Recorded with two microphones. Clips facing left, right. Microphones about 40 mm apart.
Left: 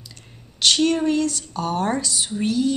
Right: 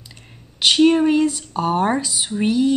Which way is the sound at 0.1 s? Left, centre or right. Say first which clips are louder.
Right 2 dB; centre.